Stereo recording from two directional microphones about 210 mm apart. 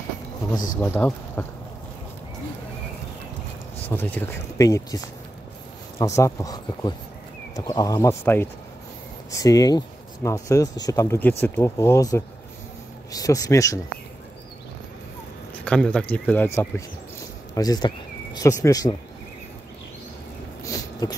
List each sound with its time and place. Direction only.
0.7 s speech: 10° left (ahead or behind)
3.9 s speech: 10° left (ahead or behind)
15.6 s speech: 5° left (ahead or behind)
17.6 s speech: 20° left (ahead or behind)
20.6 s a sound: 15° left (ahead or behind)